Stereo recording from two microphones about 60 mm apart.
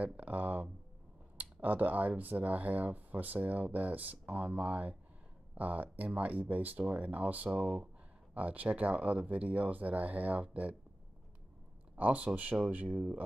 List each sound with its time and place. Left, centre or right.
0.0 s a sound: right
1.4 s speech: right
11.9 s speech: right
12.9 s speech: centre